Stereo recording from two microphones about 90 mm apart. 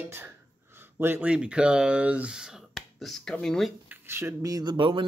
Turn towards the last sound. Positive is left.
turn(degrees=-65)  # may be behind; listen again after turning